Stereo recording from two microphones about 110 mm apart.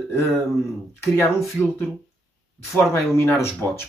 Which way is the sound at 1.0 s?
25° left (ahead or behind).